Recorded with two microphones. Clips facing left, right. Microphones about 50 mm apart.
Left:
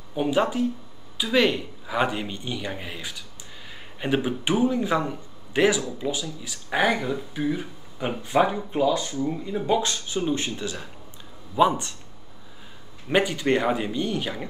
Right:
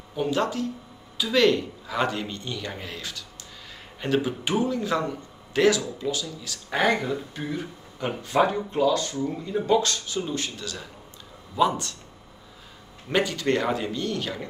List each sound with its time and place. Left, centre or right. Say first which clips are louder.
0.1 s a man's voice: left 2 dB; centre
13.1 s a man's voice: left 2 dB; centre